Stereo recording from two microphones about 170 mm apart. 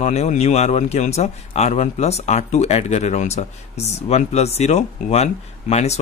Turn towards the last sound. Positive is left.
turn(degrees=40)  # may be behind; listen again after turning